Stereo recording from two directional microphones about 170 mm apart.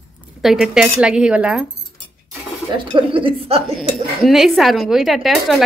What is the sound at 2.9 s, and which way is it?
Speech, 30° right (ahead or behind).